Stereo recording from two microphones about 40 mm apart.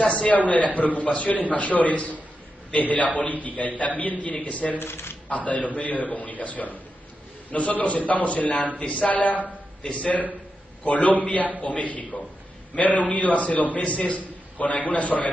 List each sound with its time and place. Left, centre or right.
0.0 s a man's voice: left
4.7 s speech: left
5.3 s a man's voice: left
9.8 s a man's voice: left
10.8 s a man's voice: left
13.8 s a man's voice: left